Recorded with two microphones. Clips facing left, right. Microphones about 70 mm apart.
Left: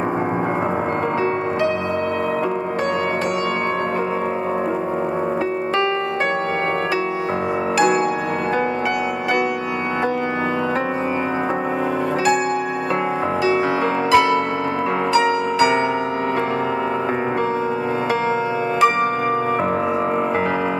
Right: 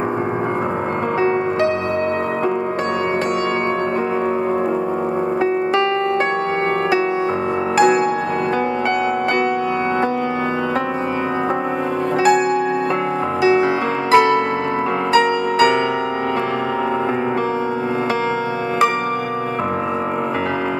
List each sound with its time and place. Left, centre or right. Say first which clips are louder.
14.1 s music: right 3 dB; right